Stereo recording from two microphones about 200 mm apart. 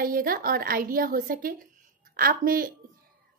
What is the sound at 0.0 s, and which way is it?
A woman's voice, 45° right (ahead or behind).